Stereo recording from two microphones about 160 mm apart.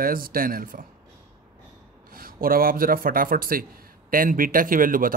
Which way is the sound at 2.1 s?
65° right (ahead or behind).